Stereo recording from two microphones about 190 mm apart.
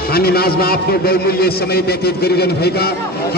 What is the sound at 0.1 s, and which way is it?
A man's voice, 55° left (ahead or behind).